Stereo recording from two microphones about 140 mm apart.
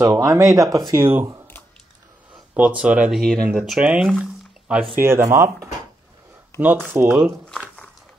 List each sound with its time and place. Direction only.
0.0 s speech: 20° right (ahead or behind)
2.3 s speech: 10° right (ahead or behind)